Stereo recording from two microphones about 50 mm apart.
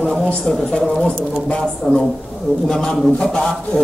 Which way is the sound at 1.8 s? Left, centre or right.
Centre.